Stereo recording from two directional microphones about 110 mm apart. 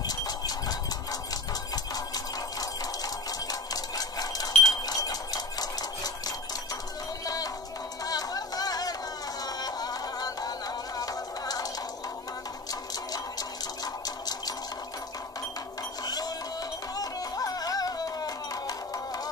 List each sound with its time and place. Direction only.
0.0 s horse: 35° left (ahead or behind)
1.3 s music: 35° left (ahead or behind)
8.0 s a sound: 35° left (ahead or behind)
9.6 s music: 35° left (ahead or behind)
12.9 s a sound: 35° left (ahead or behind)
16.0 s music: 35° left (ahead or behind)